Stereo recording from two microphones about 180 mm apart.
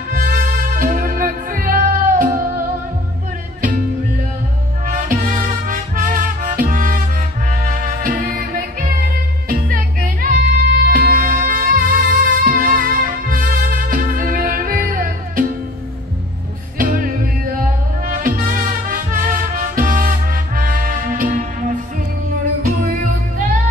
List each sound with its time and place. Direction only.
0.1 s music: 50° right (ahead or behind)
4.8 s music: 50° right (ahead or behind)
16.7 s music: 50° right (ahead or behind)